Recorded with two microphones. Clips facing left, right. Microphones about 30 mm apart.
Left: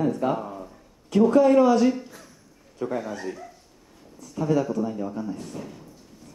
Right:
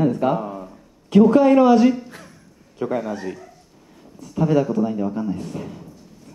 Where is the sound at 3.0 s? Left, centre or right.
Centre.